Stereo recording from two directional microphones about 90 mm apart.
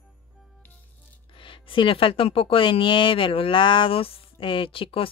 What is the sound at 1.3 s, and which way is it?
Speech, 70° left (ahead or behind).